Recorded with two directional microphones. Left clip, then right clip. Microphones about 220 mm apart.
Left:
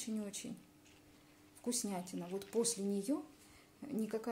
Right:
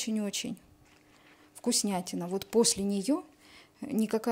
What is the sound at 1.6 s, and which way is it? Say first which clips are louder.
Speech: right 10 dB; 35° right (ahead or behind).